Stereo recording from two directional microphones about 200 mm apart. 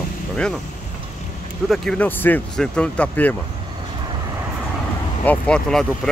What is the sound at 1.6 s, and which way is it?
Speech, centre (ahead or behind).